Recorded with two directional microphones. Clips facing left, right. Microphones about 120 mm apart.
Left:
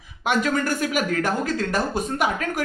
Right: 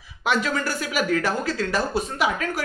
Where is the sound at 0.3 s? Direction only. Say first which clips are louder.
Left 2 dB; 50° left (ahead or behind).